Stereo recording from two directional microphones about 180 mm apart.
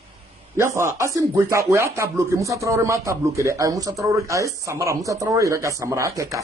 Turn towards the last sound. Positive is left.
turn(degrees=-15)  # may be behind; listen again after turning